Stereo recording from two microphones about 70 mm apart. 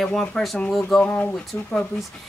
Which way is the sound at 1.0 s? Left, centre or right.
Left.